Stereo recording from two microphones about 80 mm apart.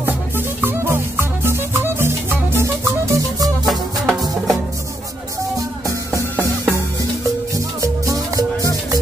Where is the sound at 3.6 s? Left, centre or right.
Centre.